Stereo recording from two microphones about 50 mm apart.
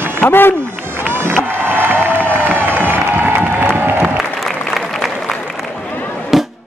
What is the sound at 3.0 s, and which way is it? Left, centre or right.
Music, right.